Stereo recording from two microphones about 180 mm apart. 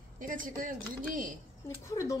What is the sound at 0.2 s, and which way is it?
Speech, 50° right (ahead or behind).